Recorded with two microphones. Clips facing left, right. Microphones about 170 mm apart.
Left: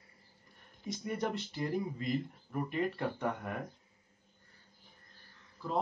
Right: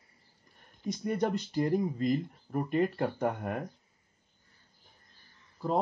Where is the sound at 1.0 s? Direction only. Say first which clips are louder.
Right 6 dB; 40° right (ahead or behind).